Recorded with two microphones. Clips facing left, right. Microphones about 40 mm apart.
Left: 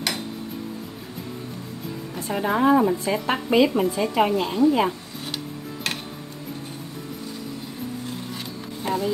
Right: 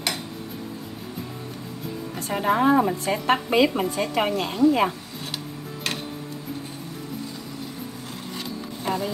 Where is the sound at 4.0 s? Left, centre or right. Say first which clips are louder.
Left 2 dB; right.